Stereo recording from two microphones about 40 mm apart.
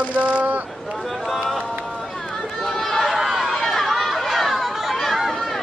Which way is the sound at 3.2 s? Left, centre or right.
Centre.